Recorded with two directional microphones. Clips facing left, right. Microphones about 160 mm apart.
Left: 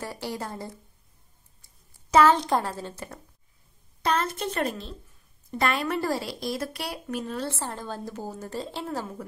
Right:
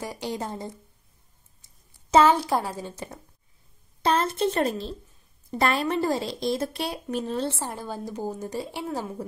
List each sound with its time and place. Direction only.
0.0 s a woman's voice: 15° right (ahead or behind)
1.6 s a sound: 25° right (ahead or behind)
2.2 s a woman's voice: 10° right (ahead or behind)
4.0 s a woman's voice: 30° right (ahead or behind)
5.9 s a woman's voice: 20° right (ahead or behind)
7.5 s a woman's voice: 15° right (ahead or behind)